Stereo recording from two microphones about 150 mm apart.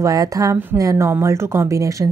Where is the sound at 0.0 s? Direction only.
25° right (ahead or behind).